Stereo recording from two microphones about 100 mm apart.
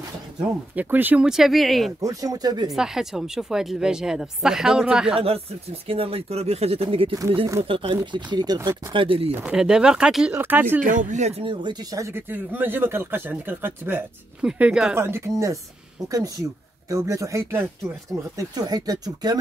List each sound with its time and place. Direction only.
0.7 s speech: 20° right (ahead or behind); by 2.0 s centre (ahead or behind)
2.0 s speech: 35° right (ahead or behind)
2.7 s speech: 5° right (ahead or behind)
5.9 s speech: 70° right (ahead or behind); by 8.5 s 45° right (ahead or behind)
8.6 s speech: 60° right (ahead or behind)
9.3 s speech: 10° right (ahead or behind)
10.3 s speech: 20° right (ahead or behind)
11.2 s speech: 80° right
11.9 s speech: 30° right (ahead or behind)
14.4 s speech: 10° right (ahead or behind)
15.0 s speech: 25° right (ahead or behind)
18.4 s speech: 40° right (ahead or behind)